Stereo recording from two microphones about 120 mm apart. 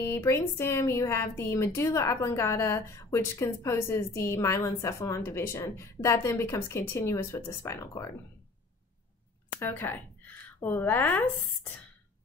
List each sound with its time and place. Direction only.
0.0 s a woman's voice: 25° left (ahead or behind)
9.6 s speech: 15° left (ahead or behind)